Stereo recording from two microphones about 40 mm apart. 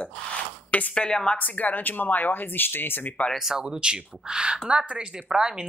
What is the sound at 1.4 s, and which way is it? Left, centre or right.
Speech, left.